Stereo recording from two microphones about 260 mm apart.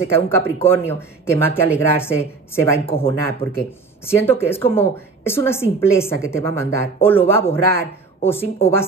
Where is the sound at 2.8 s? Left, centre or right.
Left.